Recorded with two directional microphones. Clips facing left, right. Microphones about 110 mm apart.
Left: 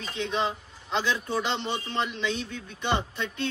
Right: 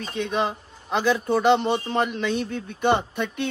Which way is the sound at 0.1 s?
50° right (ahead or behind).